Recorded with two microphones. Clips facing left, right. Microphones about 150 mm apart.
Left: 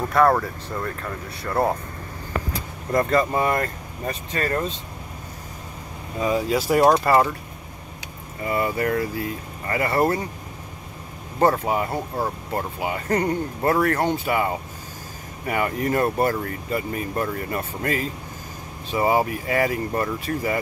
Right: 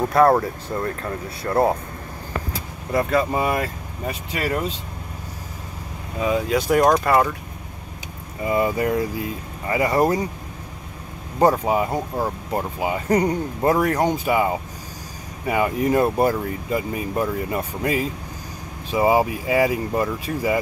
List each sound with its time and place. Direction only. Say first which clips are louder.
0.1 s speech: right 2 dB; 35° right (ahead or behind)
2.9 s speech: even; 5° right (ahead or behind)
6.1 s speech: right 1 dB; centre (ahead or behind)
8.5 s speech: right 3 dB; 15° right (ahead or behind)
11.3 s speech: right 2 dB; 15° right (ahead or behind)